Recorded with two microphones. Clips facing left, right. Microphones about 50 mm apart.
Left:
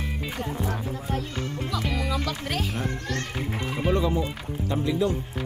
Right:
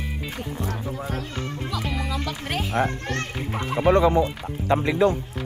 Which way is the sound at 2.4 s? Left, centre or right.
Centre.